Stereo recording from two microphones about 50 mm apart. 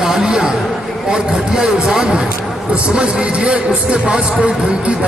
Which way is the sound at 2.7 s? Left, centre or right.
Right.